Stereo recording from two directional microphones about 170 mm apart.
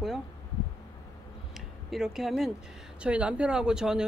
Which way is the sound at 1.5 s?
Centre (ahead or behind).